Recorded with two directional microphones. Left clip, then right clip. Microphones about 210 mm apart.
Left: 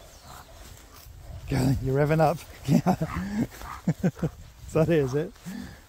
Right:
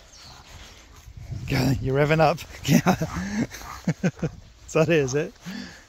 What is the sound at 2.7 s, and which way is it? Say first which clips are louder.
Speech: right 3 dB; 5° right (ahead or behind).